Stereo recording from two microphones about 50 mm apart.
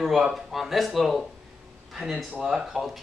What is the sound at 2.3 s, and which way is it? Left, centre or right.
Speech, centre.